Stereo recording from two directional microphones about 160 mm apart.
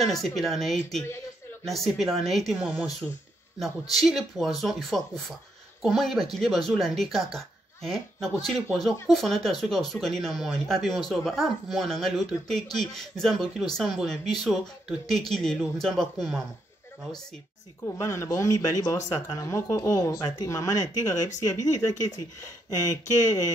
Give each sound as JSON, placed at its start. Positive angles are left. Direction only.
{"t": 0.0, "sound": "speech", "side_deg": 0}
{"t": 17.8, "sound": "speech", "side_deg": 20}